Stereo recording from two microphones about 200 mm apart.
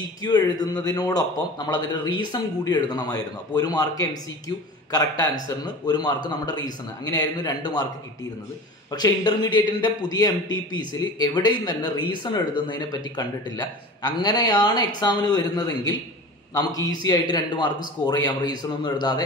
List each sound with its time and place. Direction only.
0.2 s speech: 20° left (ahead or behind)
8.9 s speech: 20° left (ahead or behind)
17.0 s speech: 20° left (ahead or behind)